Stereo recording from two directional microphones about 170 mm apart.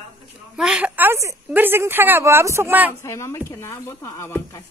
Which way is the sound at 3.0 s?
15° left (ahead or behind).